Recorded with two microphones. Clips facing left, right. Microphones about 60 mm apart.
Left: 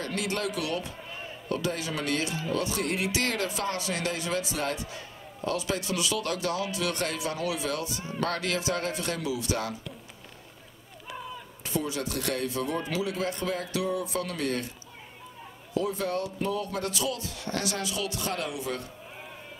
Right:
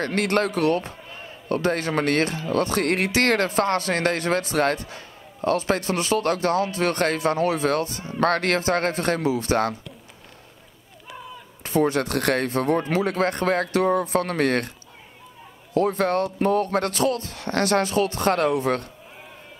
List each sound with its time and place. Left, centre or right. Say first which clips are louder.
0.0 s speech: right 9 dB; right
0.5 s speech: right 9 dB; right
0.9 s a sound: even; centre
1.5 s speech: right 8 dB; right
11.1 s artillery fire: even; centre
11.6 s speech: right 10 dB; right
15.7 s speech: right 8 dB; right